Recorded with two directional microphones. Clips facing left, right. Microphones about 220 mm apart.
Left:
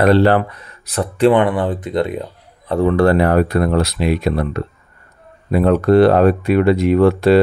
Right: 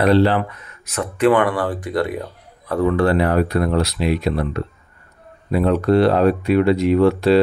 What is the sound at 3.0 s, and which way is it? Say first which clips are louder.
Speech: left 5 dB; 45° left (ahead or behind).